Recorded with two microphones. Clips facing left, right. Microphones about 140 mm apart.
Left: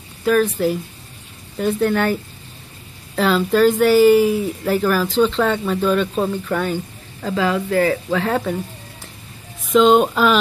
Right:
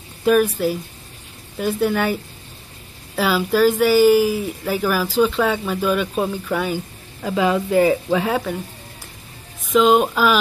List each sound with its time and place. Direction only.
0.2 s speech: 15° right (ahead or behind)
1.6 s speech: 5° right (ahead or behind)
3.2 s speech: 5° right (ahead or behind)
7.3 s speech: 15° right (ahead or behind)
8.3 s speech: centre (ahead or behind)
9.7 s speech: centre (ahead or behind)